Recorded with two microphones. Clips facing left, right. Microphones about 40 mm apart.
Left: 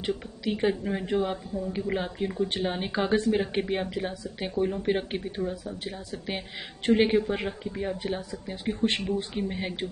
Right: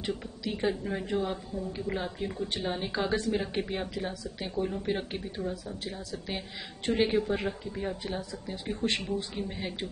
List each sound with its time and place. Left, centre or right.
0.0 s a woman's voice: left
5.4 s speech: centre
6.1 s a woman's voice: left
9.5 s a woman's voice: centre